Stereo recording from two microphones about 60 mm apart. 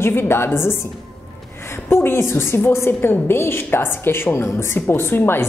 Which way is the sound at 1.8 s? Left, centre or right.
Left.